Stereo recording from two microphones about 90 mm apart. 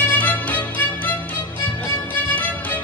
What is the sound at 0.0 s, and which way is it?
Music, 20° left (ahead or behind).